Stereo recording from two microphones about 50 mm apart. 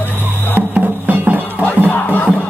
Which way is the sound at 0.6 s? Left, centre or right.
Right.